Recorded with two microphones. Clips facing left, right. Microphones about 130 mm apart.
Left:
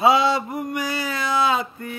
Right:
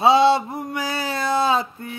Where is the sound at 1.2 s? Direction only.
35° right (ahead or behind).